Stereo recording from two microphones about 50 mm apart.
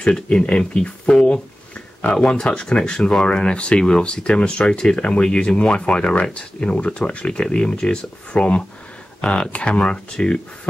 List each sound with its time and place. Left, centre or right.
0.1 s speech: centre